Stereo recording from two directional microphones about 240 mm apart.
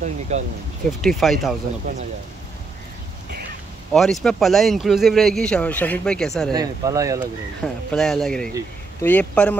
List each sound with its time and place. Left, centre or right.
0.3 s speech: right
1.0 s speech: centre
3.9 s speech: centre
6.5 s speech: centre
7.6 s speech: centre